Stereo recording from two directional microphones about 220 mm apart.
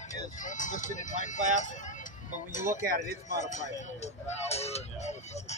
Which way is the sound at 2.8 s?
40° right (ahead or behind).